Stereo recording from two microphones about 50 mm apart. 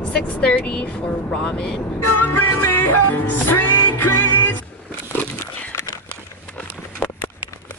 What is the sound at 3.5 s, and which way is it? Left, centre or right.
Music, left.